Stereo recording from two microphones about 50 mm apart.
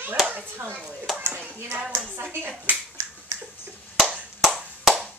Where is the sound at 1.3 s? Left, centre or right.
Right.